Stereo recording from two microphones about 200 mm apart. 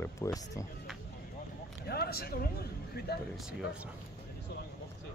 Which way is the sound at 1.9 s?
50° left (ahead or behind).